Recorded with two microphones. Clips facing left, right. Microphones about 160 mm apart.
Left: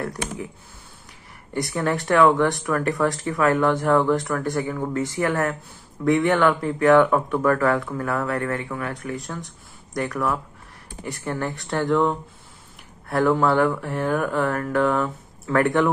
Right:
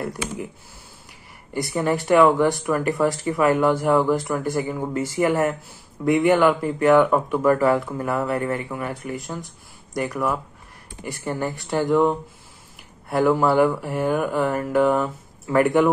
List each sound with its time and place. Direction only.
1.5 s speech: 5° right (ahead or behind)